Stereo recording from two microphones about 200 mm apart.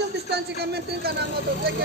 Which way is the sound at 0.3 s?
55° right (ahead or behind).